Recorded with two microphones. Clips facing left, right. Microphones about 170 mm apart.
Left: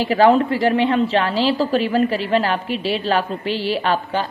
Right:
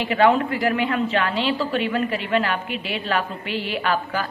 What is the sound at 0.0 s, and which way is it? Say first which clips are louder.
A woman's voice: left 4 dB; 35° left (ahead or behind).